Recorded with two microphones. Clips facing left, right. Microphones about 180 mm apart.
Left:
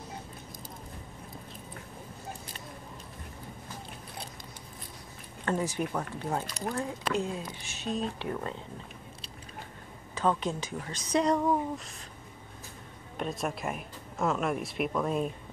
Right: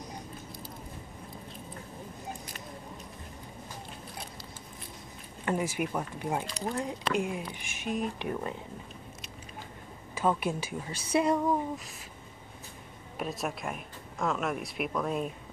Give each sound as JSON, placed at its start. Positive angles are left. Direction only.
{"t": 5.4, "sound": "speech", "side_deg": -10}
{"t": 10.1, "sound": "speech", "side_deg": -10}
{"t": 13.2, "sound": "speech", "side_deg": 0}